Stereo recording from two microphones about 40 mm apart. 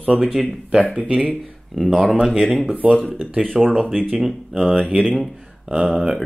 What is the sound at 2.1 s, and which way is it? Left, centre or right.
Speech, right.